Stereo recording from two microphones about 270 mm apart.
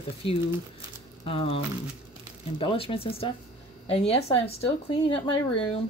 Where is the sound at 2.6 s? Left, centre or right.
Centre.